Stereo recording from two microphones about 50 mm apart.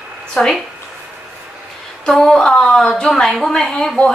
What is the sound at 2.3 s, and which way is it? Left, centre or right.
A woman's voice, centre.